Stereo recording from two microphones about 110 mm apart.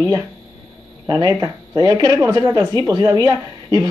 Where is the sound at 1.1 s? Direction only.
35° right (ahead or behind).